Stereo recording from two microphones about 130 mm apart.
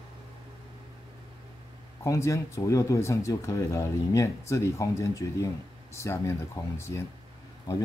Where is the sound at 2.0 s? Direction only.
25° left (ahead or behind).